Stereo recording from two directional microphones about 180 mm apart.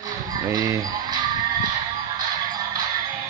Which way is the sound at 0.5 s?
20° right (ahead or behind).